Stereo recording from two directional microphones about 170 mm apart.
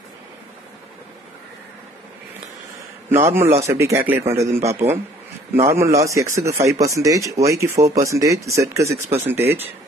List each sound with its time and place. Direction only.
3.1 s speech: 15° right (ahead or behind)